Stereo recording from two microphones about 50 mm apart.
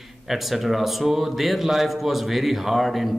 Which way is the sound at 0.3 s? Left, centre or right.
Centre.